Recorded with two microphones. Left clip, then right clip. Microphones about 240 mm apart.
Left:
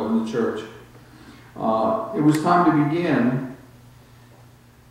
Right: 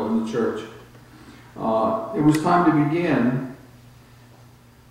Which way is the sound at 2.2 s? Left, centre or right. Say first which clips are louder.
Even; centre.